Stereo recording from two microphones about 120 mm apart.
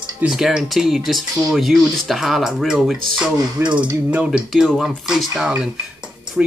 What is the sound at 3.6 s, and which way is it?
Mechanisms, 20° right (ahead or behind).